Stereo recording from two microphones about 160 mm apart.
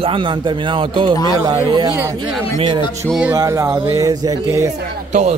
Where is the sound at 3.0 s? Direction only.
5° right (ahead or behind).